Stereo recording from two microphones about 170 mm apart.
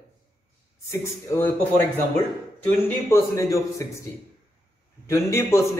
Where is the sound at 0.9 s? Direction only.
15° left (ahead or behind).